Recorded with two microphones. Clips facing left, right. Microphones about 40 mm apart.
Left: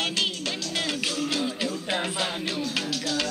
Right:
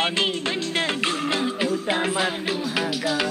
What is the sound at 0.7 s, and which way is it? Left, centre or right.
Music, right.